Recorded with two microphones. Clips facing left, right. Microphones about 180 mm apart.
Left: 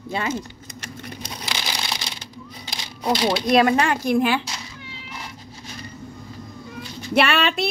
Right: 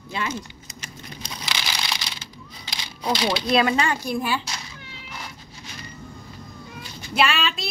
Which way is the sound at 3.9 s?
65° left (ahead or behind).